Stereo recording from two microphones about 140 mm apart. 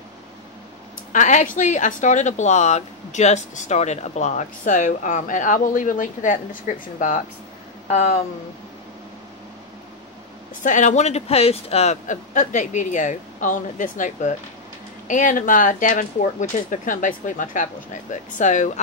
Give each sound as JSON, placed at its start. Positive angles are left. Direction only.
{"t": 1.1, "sound": "a woman's voice", "side_deg": 65}
{"t": 7.9, "sound": "speech", "side_deg": 50}
{"t": 10.6, "sound": "a woman's voice", "side_deg": 65}